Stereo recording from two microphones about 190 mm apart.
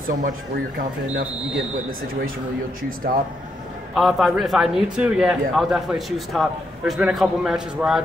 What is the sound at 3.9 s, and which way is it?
A man's voice, centre (ahead or behind).